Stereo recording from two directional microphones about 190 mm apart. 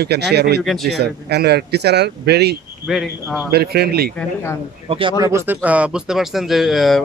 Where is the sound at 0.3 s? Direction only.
60° right (ahead or behind).